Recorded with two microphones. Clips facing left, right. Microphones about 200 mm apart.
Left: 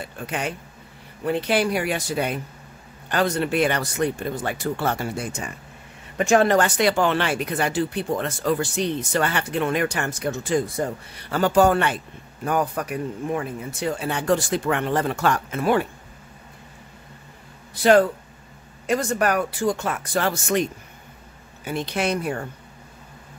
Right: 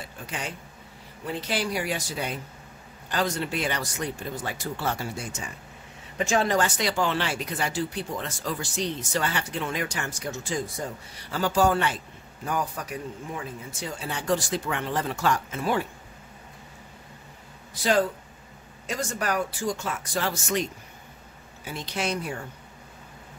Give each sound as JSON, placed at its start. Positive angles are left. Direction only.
{"t": 0.0, "sound": "a man's voice", "side_deg": 60}
{"t": 18.9, "sound": "speech", "side_deg": 60}
{"t": 21.6, "sound": "speech", "side_deg": 60}